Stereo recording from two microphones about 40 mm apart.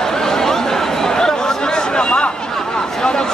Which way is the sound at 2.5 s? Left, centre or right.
Centre.